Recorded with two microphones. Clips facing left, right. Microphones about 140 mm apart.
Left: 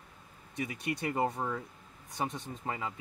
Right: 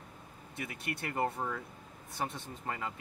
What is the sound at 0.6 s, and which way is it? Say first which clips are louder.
Speech: left 5 dB; 15° left (ahead or behind).